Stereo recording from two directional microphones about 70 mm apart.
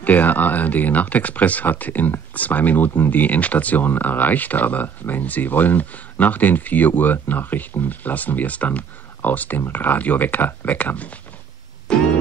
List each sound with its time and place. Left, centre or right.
0.0 s speech: left
11.9 s music: centre